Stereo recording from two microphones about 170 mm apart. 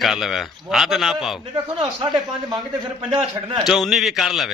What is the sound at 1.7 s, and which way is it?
Speech, 25° right (ahead or behind).